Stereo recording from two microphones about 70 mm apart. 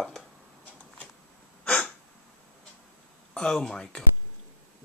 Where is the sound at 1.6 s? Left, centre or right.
Centre.